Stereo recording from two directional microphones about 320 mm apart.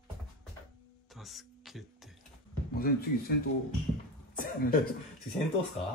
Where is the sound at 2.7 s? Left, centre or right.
Left.